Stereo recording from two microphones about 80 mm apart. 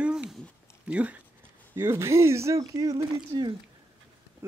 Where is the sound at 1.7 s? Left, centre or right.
Right.